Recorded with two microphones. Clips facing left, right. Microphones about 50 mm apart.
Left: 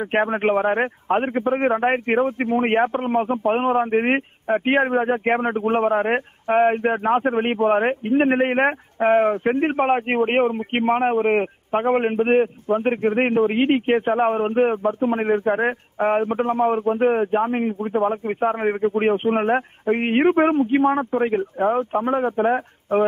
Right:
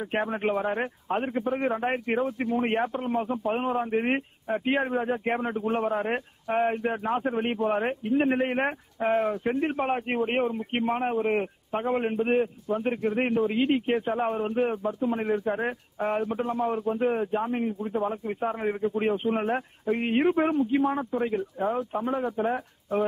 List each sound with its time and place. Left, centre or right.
0.1 s a man's voice: left